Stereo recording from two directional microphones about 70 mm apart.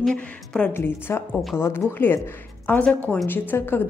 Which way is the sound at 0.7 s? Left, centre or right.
Left.